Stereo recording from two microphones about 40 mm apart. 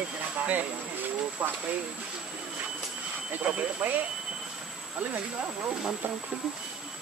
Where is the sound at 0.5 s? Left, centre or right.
Right.